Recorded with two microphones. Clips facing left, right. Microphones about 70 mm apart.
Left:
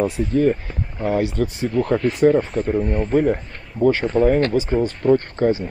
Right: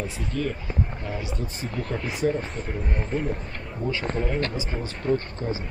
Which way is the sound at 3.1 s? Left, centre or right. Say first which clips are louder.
Left 11 dB; left.